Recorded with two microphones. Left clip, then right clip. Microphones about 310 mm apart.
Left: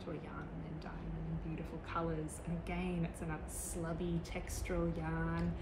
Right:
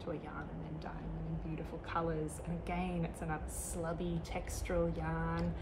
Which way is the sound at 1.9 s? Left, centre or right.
Centre.